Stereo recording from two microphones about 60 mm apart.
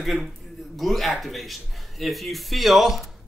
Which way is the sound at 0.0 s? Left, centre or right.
Centre.